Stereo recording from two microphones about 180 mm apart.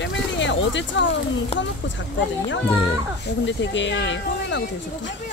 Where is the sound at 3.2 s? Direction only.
90° left.